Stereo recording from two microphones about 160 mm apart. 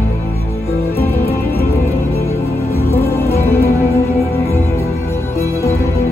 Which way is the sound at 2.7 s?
15° left (ahead or behind).